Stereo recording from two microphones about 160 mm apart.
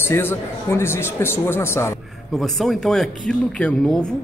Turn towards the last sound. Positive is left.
turn(degrees=5)  # may be behind; listen again after turning